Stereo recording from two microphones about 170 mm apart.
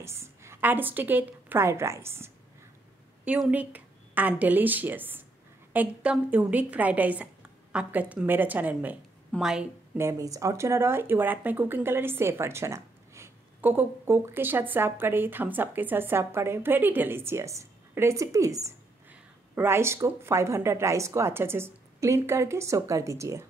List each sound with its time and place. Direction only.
0.0 s a woman's voice: 15° right (ahead or behind)
9.9 s speech: 15° right (ahead or behind)